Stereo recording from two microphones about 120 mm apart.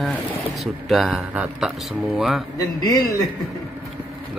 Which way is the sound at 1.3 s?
10° right (ahead or behind).